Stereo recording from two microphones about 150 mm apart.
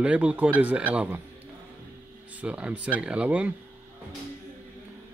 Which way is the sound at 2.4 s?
10° right (ahead or behind).